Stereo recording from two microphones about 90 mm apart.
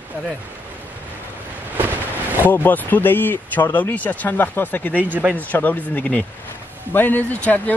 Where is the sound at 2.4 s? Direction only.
20° left (ahead or behind).